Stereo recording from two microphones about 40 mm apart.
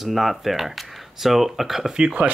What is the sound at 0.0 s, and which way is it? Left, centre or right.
Speech, centre.